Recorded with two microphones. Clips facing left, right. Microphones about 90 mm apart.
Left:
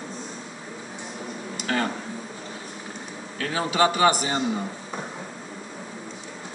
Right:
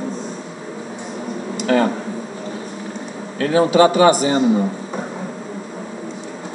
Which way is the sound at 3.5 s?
30° right (ahead or behind).